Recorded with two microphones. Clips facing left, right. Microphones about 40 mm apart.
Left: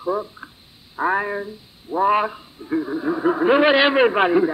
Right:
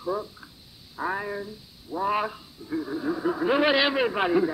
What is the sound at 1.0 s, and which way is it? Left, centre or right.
Speech, left.